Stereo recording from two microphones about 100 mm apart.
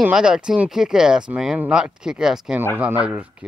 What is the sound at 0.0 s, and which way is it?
Speech, 5° right (ahead or behind).